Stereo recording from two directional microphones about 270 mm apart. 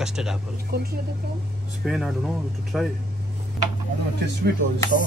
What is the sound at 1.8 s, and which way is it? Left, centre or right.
Speech, centre.